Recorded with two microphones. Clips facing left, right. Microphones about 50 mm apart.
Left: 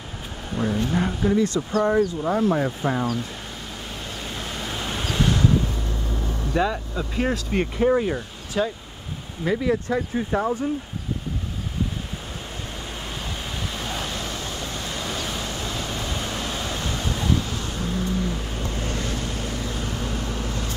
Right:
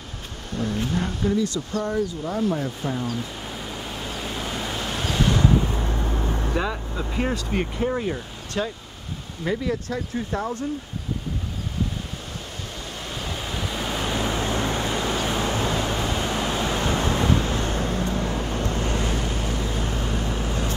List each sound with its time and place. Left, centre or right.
0.5 s vehicle: centre
1.4 s speech: left
3.6 s vehicle: centre
5.1 s waves: centre
5.7 s vehicle: right
6.5 s speech: centre
13.0 s vehicle: centre
14.0 s vehicle: right
18.1 s vehicle: centre